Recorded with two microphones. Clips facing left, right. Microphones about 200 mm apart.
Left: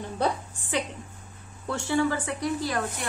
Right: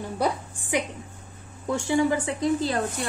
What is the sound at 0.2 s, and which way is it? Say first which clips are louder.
A woman's voice: right 1 dB; 10° right (ahead or behind).